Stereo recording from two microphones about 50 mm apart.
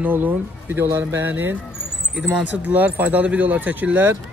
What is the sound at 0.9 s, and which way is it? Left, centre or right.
Speech, right.